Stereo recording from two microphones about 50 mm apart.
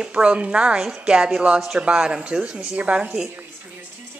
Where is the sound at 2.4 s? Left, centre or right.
Right.